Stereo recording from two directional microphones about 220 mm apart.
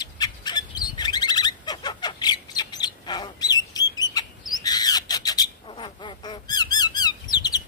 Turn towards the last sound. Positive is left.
turn(degrees=20)  # may be behind; listen again after turning